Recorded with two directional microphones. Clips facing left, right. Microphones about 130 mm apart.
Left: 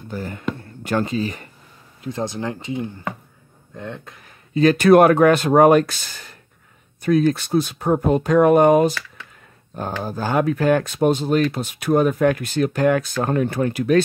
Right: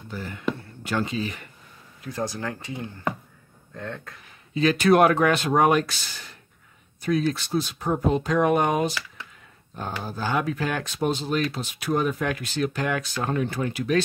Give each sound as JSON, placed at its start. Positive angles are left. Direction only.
{"t": 0.1, "sound": "speech", "side_deg": 45}
{"t": 2.0, "sound": "speech", "side_deg": 20}
{"t": 4.6, "sound": "speech", "side_deg": 50}
{"t": 10.0, "sound": "speech", "side_deg": 45}